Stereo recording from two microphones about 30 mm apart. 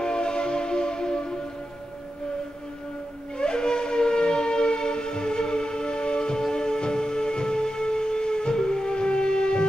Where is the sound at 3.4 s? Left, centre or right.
Left.